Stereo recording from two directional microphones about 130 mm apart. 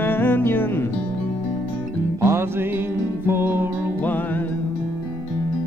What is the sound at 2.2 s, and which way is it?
Music, 20° right (ahead or behind).